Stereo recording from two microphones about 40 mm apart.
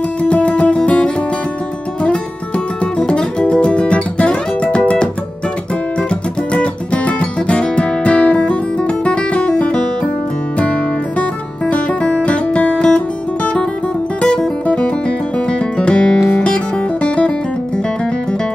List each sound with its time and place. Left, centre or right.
0.2 s music: left
3.1 s guitar: left
5.9 s music: left
14.8 s music: left
16.3 s music: left